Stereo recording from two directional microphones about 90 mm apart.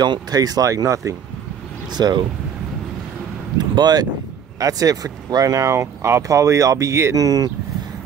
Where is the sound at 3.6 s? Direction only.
50° right (ahead or behind).